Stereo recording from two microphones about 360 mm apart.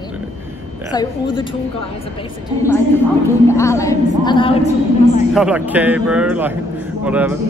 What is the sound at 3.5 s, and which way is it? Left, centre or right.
A woman's voice, centre.